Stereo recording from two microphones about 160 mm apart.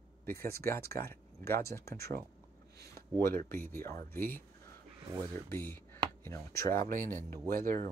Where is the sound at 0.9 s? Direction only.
15° left (ahead or behind).